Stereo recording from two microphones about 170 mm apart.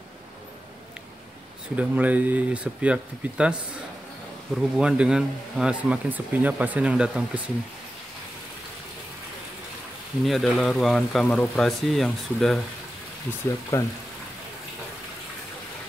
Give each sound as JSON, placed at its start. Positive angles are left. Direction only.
{"t": 1.8, "sound": "speech", "side_deg": -10}
{"t": 4.6, "sound": "speech", "side_deg": -5}
{"t": 10.2, "sound": "speech", "side_deg": 0}
{"t": 13.7, "sound": "speech", "side_deg": 15}